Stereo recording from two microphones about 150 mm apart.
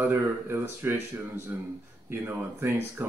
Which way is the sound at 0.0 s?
15° right (ahead or behind).